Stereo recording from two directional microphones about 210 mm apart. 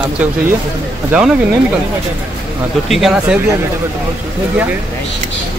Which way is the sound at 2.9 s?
Centre (ahead or behind).